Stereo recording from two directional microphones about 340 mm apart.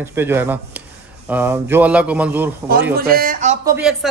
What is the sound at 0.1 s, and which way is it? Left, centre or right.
A man's voice, centre.